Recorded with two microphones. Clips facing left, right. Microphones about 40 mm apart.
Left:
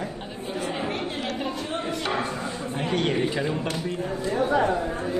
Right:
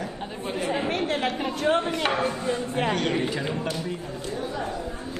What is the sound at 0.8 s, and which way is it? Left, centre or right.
Chatter, right.